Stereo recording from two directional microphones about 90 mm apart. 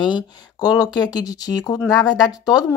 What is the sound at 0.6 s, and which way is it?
A woman's voice, 45° left (ahead or behind).